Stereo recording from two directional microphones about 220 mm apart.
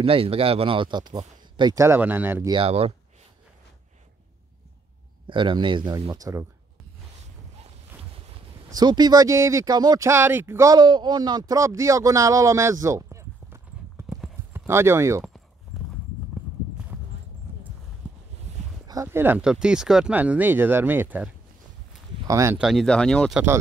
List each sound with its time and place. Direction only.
0.0 s speech: 25° right (ahead or behind); by 2.5 s 10° right (ahead or behind)
2.5 s speech: 25° right (ahead or behind)
5.2 s speech: 20° right (ahead or behind)
8.6 s speech: 20° right (ahead or behind)
14.1 s clip-clop: centre (ahead or behind)
14.7 s speech: 10° right (ahead or behind)
15.7 s clip-clop: centre (ahead or behind)
18.5 s a sound: 30° right (ahead or behind)
18.9 s speech: 15° right (ahead or behind); by 23.4 s 5° left (ahead or behind)